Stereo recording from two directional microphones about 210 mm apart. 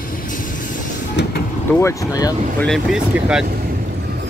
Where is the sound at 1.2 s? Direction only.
55° left (ahead or behind).